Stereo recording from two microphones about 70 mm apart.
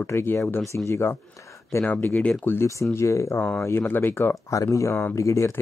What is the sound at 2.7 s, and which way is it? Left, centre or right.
Speech, left.